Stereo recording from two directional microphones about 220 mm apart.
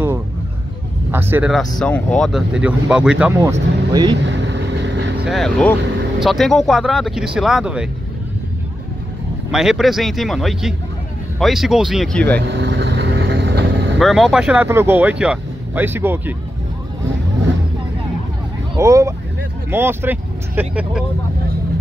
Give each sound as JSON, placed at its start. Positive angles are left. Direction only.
{"t": 1.1, "sound": "speech", "side_deg": -5}
{"t": 3.9, "sound": "speech", "side_deg": -20}
{"t": 4.2, "sound": "vehicle", "side_deg": -55}
{"t": 5.2, "sound": "speech", "side_deg": 0}
{"t": 9.5, "sound": "speech", "side_deg": 0}
{"t": 12.4, "sound": "vehicle", "side_deg": -55}
{"t": 13.9, "sound": "speech", "side_deg": 0}
{"t": 18.8, "sound": "speech", "side_deg": -15}